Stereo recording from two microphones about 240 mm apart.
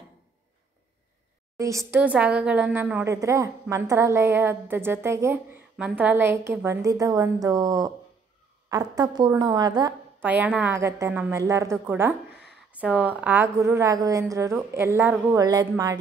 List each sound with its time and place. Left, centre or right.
1.6 s a woman's voice: centre